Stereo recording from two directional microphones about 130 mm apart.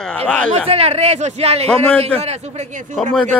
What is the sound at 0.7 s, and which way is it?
Speech, 50° right (ahead or behind).